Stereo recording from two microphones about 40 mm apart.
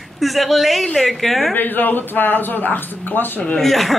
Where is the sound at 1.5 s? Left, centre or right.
Left.